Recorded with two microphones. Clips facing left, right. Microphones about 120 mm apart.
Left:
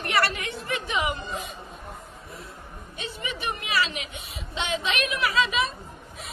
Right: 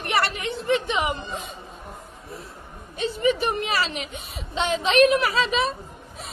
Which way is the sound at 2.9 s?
35° right (ahead or behind).